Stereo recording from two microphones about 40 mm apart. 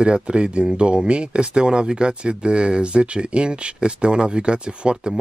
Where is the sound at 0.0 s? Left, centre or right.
Right.